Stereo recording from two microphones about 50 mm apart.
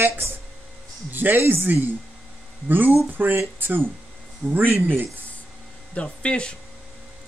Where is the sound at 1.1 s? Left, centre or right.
Right.